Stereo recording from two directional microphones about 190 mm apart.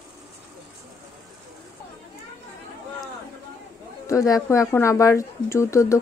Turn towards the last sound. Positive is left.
turn(degrees=15)  # may be behind; listen again after turning